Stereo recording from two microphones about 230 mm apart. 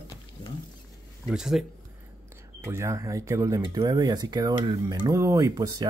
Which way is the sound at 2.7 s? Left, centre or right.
Centre.